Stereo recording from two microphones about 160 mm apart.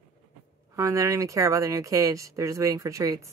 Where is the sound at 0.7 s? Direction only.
20° right (ahead or behind).